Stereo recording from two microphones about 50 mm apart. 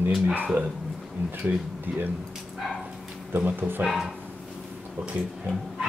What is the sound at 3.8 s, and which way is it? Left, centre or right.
Speech, centre.